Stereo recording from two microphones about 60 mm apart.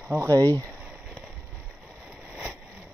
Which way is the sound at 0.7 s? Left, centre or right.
Right.